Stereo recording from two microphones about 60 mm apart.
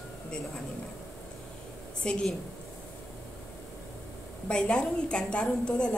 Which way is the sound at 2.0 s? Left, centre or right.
Centre.